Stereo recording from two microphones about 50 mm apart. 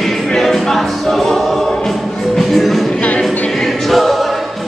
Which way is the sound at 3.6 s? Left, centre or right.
Centre.